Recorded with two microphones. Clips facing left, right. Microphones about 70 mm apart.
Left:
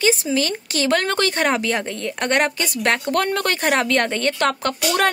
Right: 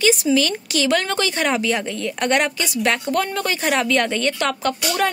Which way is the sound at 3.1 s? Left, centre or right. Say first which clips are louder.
Left 1 dB; left.